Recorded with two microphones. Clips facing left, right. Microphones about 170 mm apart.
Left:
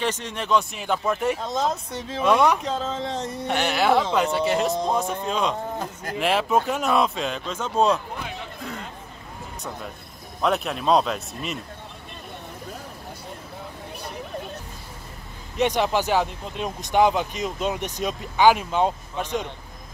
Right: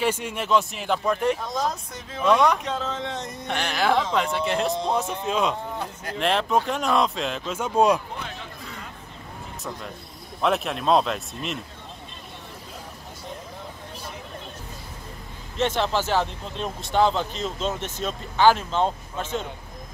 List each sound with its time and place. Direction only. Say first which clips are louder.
0.0 s a man's voice: right 2 dB; 10° right (ahead or behind)
1.5 s speech: left 2 dB; 25° left (ahead or behind)
2.2 s speech: even; 10° left (ahead or behind)
2.6 s speech: left 2 dB; 35° left (ahead or behind)
3.4 s a man's voice: left 3 dB; 5° left (ahead or behind); by 8.0 s 10° right (ahead or behind)
10.4 s a man's voice: even; centre (ahead or behind)
15.5 s speech: left 2 dB; 15° left (ahead or behind)